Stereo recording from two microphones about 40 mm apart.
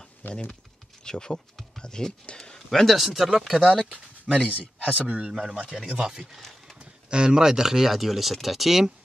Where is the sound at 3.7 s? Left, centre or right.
Right.